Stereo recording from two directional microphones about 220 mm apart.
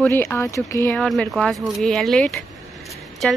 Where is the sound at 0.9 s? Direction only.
5° left (ahead or behind).